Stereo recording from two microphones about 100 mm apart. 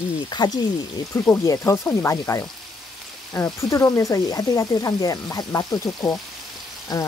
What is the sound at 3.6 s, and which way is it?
Speech, 30° left (ahead or behind).